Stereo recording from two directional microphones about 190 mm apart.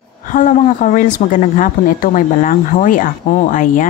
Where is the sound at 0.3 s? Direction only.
45° left (ahead or behind).